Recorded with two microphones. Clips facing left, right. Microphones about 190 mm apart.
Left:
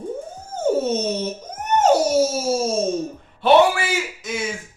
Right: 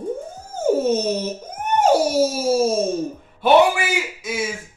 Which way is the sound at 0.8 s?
10° right (ahead or behind).